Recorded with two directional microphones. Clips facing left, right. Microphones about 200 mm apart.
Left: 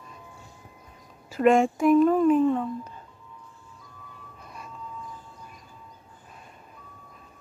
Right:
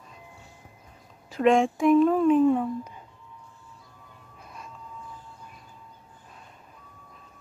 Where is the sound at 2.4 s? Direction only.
10° right (ahead or behind).